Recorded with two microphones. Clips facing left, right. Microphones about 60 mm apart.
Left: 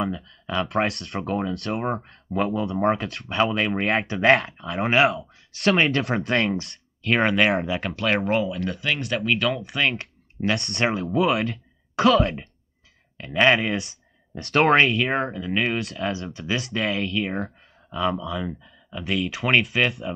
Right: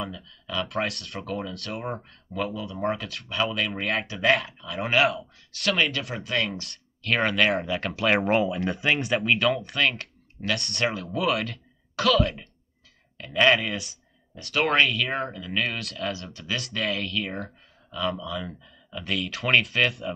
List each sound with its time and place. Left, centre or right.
0.1 s speech: left
0.9 s speech: left
1.7 s speech: left
6.5 s speech: centre
7.5 s speech: centre
7.9 s speech: centre
9.0 s speech: centre
11.9 s speech: left
14.4 s speech: left
14.8 s speech: left; by 20.2 s centre